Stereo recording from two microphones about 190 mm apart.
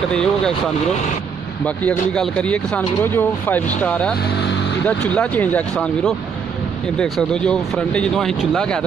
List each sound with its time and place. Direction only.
0.1 s speech: 5° left (ahead or behind)
1.8 s speech: 5° left (ahead or behind)
4.2 s vehicle: 65° left (ahead or behind)
4.8 s speech: 5° left (ahead or behind)